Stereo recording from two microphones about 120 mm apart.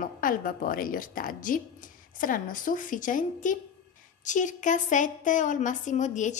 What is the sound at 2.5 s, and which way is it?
A woman's voice, 90° left.